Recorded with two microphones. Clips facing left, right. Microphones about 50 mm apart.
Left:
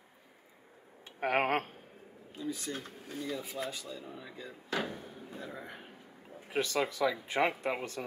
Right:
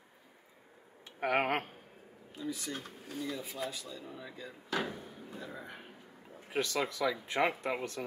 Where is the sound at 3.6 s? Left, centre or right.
Centre.